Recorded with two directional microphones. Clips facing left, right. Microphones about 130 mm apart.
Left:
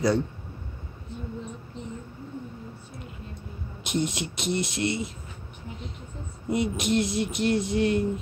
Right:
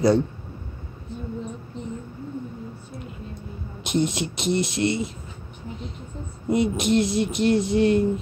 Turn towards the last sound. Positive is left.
turn(degrees=-30)  # may be behind; listen again after turning